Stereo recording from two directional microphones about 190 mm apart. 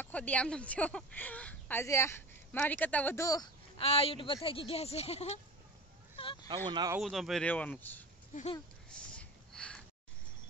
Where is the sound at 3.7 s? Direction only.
30° left (ahead or behind).